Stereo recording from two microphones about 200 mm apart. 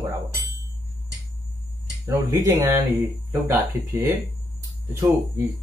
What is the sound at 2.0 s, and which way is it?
Speech, 15° right (ahead or behind).